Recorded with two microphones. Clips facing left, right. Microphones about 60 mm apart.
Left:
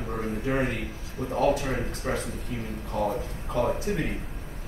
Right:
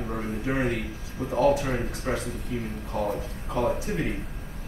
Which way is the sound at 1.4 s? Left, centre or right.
Right.